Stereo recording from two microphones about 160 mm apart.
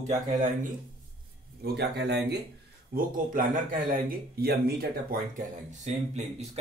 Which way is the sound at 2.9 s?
60° right (ahead or behind).